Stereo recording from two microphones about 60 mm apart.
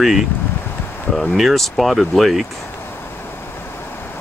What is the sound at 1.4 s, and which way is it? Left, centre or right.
Speech, centre.